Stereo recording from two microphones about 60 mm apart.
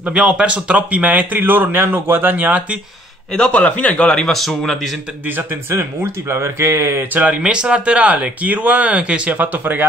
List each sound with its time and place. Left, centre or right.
0.0 s speech: centre
3.3 s a man's voice: centre
4.2 s speech: centre
5.3 s speech: right
7.2 s speech: right